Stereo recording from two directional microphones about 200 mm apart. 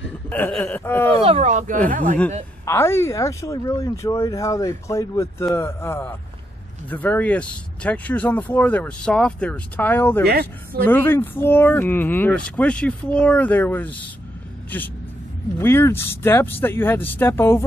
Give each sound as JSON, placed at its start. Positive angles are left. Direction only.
{"t": 0.3, "sound": "speech", "side_deg": 5}
{"t": 1.2, "sound": "speech", "side_deg": -30}
{"t": 2.6, "sound": "speech", "side_deg": 15}
{"t": 10.2, "sound": "speech", "side_deg": -50}
{"t": 10.9, "sound": "speech", "side_deg": 10}